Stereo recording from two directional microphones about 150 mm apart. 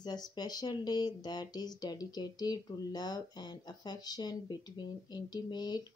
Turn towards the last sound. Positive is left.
turn(degrees=30)  # may be behind; listen again after turning